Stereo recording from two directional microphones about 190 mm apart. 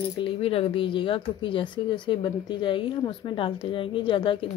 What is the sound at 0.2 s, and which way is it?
Speech, 30° left (ahead or behind).